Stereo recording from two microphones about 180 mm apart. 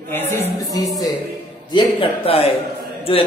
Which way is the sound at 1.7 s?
30° left (ahead or behind).